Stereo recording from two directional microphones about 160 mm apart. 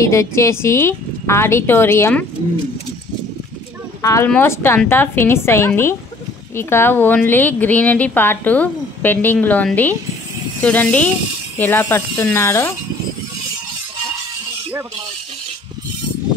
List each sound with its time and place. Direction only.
0.1 s a woman's voice: 20° left (ahead or behind)
4.0 s a woman's voice: 20° left (ahead or behind)